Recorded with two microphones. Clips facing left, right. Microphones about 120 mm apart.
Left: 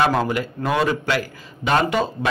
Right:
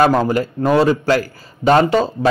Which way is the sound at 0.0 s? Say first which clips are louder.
Right 5 dB; 40° right (ahead or behind).